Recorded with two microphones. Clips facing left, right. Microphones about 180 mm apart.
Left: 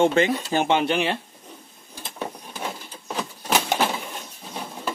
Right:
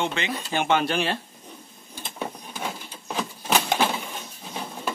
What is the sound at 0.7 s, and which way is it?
Speech, 20° left (ahead or behind).